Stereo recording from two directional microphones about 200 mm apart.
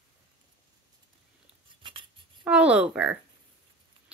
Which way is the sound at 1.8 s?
25° right (ahead or behind).